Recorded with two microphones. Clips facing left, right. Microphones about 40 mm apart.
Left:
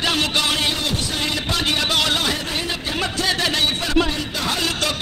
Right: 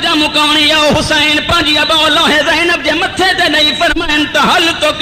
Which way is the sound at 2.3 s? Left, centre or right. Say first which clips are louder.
Right 15 dB; right.